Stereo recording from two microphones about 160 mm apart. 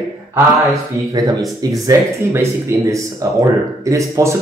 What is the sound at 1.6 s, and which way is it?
Speech, 20° right (ahead or behind).